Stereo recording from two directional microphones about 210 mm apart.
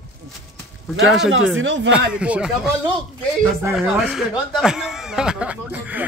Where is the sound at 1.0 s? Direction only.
Centre (ahead or behind).